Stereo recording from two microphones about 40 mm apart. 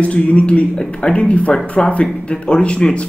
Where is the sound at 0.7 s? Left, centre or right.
Left.